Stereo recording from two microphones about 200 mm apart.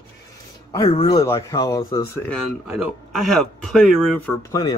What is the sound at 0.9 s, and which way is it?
Speech, 20° left (ahead or behind).